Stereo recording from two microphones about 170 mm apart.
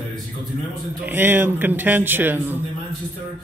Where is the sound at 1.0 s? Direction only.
10° right (ahead or behind).